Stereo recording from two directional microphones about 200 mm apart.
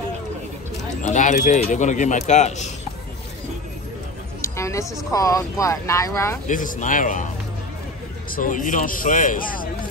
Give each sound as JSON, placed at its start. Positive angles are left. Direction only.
{"t": 1.0, "sound": "speech", "side_deg": 40}
{"t": 4.4, "sound": "a sound", "side_deg": 15}
{"t": 5.1, "sound": "speech", "side_deg": 15}
{"t": 6.4, "sound": "speech", "side_deg": 40}
{"t": 8.3, "sound": "speech", "side_deg": 40}